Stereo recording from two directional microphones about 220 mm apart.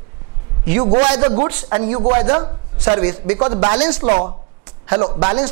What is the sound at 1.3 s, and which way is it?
Speech, 25° right (ahead or behind).